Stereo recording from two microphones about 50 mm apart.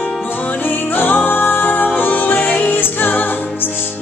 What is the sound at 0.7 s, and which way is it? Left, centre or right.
Music, left.